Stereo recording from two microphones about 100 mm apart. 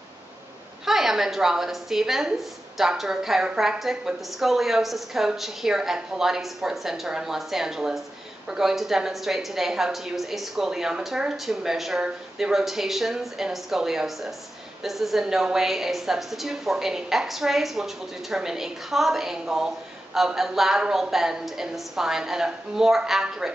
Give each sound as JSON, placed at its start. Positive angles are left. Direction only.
{"t": 0.8, "sound": "a woman's voice", "side_deg": -5}